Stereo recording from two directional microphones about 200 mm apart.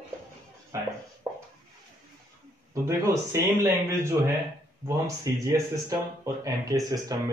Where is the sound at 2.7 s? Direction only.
15° right (ahead or behind).